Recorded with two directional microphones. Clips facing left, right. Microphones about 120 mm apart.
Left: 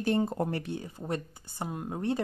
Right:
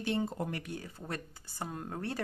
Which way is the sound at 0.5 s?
25° left (ahead or behind).